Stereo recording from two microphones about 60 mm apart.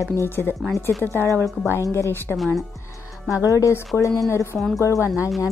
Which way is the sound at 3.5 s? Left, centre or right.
Left.